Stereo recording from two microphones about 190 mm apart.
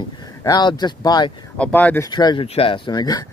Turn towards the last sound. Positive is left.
turn(degrees=20)  # may be behind; listen again after turning